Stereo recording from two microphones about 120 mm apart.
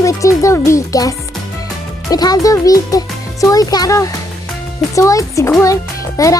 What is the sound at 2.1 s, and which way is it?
A child's voice, 30° left (ahead or behind).